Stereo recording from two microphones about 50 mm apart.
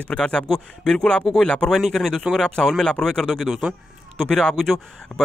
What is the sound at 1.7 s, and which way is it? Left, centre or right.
Speech, centre.